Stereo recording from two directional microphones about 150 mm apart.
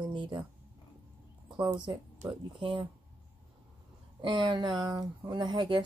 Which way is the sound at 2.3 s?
35° right (ahead or behind).